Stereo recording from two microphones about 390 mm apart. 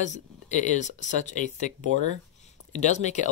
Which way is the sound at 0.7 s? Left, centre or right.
Centre.